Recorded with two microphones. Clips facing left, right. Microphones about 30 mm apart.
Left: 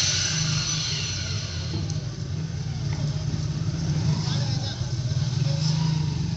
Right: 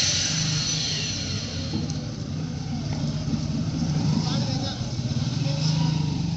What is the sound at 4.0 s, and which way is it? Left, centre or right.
Vehicle, right.